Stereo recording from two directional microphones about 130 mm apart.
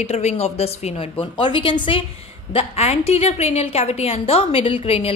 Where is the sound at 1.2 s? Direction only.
40° left (ahead or behind).